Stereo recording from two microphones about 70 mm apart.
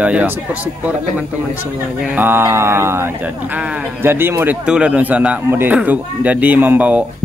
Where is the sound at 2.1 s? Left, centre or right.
Right.